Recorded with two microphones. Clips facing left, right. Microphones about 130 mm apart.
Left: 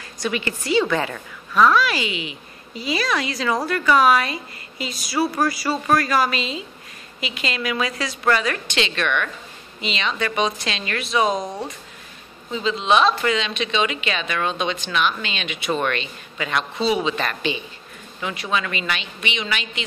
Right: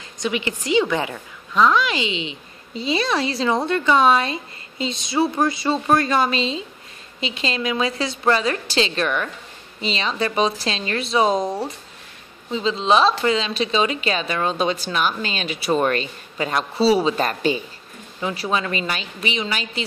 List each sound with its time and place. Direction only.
0.2 s a woman's voice: 20° right (ahead or behind); by 19.8 s 35° right (ahead or behind)